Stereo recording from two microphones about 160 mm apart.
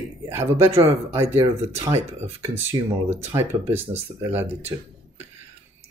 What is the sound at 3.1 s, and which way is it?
Speech, 15° right (ahead or behind).